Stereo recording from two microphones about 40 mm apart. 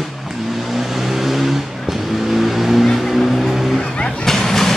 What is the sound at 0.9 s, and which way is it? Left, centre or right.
Vehicle, centre.